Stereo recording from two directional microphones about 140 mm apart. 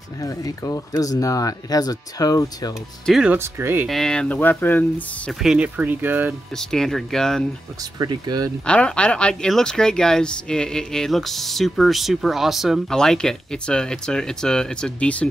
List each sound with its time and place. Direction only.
0.2 s speech: 25° left (ahead or behind)
3.1 s speech: 5° right (ahead or behind)
3.3 s speech: 15° right (ahead or behind)
3.8 s speech: 5° left (ahead or behind)
5.4 s speech: 5° right (ahead or behind)
6.5 s speech: 5° left (ahead or behind)
8.0 s speech: 30° right (ahead or behind)
8.6 s speech: 10° left (ahead or behind)